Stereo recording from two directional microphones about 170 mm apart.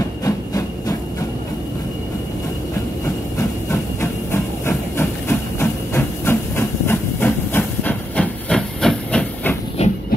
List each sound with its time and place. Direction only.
0.2 s train: 20° left (ahead or behind)
4.0 s steam: 15° left (ahead or behind)
9.8 s train: 40° left (ahead or behind)